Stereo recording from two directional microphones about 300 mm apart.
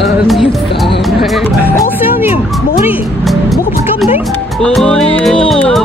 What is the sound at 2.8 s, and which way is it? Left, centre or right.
Music, centre.